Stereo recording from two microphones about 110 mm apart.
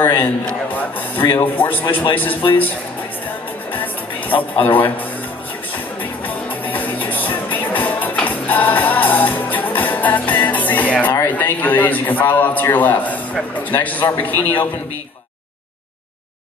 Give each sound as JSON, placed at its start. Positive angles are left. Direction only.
{"t": 0.0, "sound": "a man's voice", "side_deg": 20}
{"t": 3.7, "sound": "music", "side_deg": 15}
{"t": 6.2, "sound": "music", "side_deg": 15}
{"t": 11.1, "sound": "a man's voice", "side_deg": 20}